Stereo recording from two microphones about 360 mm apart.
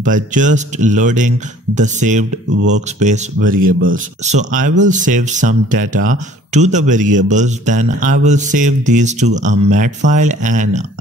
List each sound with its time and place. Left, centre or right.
0.0 s speech: right